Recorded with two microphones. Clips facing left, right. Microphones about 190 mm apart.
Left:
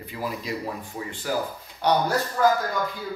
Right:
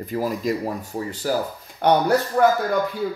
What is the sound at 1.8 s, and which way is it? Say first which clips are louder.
Speech: right 5 dB; 55° right (ahead or behind).